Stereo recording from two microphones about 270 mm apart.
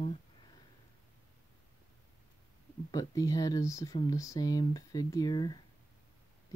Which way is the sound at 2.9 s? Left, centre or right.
Centre.